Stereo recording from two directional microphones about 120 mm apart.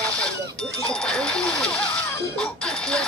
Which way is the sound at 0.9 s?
5° left (ahead or behind).